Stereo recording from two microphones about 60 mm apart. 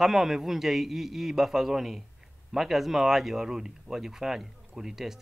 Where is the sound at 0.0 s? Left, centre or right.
Centre.